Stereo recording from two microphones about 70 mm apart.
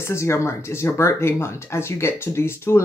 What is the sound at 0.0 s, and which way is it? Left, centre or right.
Speech, left.